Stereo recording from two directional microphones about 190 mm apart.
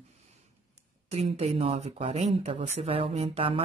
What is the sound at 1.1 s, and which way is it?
Speech, 35° right (ahead or behind).